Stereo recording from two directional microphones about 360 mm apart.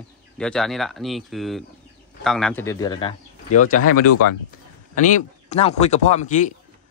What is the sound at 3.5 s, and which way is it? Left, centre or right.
Speech, left.